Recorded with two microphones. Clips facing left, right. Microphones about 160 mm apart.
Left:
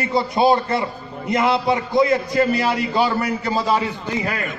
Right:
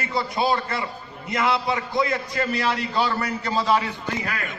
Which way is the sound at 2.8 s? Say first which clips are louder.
Left 5 dB; 10° left (ahead or behind).